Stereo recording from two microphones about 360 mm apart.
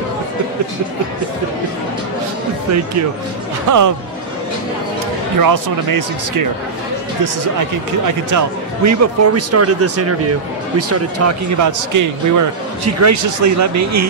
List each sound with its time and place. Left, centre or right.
3.6 s speech: right
5.4 s speech: right
8.3 s speech: right